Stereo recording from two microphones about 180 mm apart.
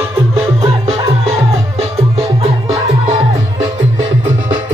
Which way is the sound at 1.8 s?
35° right (ahead or behind).